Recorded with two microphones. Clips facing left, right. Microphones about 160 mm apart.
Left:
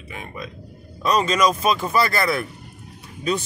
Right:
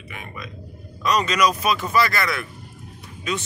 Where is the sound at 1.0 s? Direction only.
30° left (ahead or behind).